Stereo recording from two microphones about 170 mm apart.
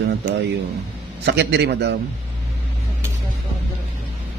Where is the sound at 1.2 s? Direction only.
90° right.